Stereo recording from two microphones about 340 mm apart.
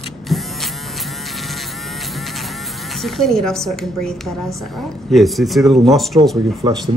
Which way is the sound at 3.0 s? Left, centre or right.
Centre.